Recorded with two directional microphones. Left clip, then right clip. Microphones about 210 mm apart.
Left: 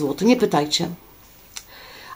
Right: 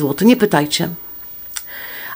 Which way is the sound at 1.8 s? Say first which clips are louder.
Right 9 dB; 35° right (ahead or behind).